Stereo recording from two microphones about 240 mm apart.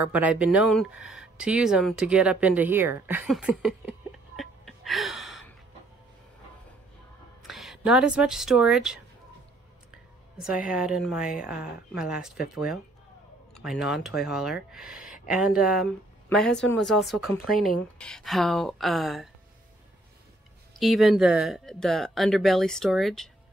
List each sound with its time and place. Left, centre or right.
0.0 s speech: centre
4.4 s gasp: centre
7.4 s speech: centre
10.6 s speech: centre
20.8 s speech: centre